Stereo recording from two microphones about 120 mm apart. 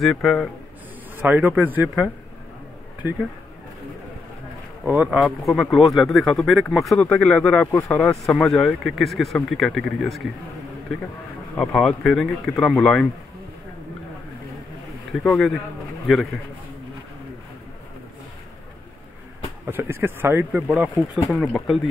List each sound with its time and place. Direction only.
0.0 s speech: centre (ahead or behind)
1.2 s speech: 15° right (ahead or behind)
4.8 s speech: 15° right (ahead or behind)
5.2 s speech: centre (ahead or behind)
8.0 s speech: 5° left (ahead or behind)
11.5 s speech: 5° left (ahead or behind)
15.2 s speech: centre (ahead or behind)
19.6 s speech: 15° right (ahead or behind)
21.4 s speech: centre (ahead or behind)